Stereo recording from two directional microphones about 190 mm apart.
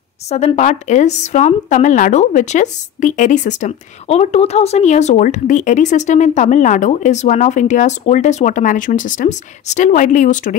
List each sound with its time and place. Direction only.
0.3 s a woman's voice: 35° left (ahead or behind)